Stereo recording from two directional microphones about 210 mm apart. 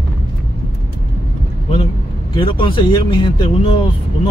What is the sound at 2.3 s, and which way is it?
Speech, 25° left (ahead or behind).